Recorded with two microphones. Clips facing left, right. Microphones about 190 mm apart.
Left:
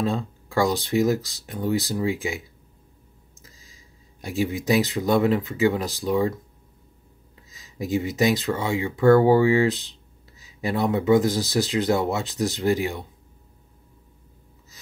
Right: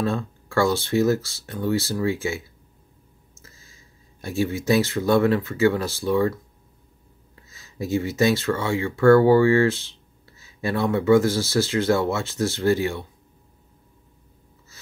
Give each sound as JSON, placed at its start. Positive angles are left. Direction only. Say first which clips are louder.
{"t": 0.0, "sound": "speech", "louder": "even", "side_deg": 15}
{"t": 3.4, "sound": "speech", "louder": "right 1 dB", "side_deg": 15}
{"t": 7.4, "sound": "speech", "louder": "right 1 dB", "side_deg": 15}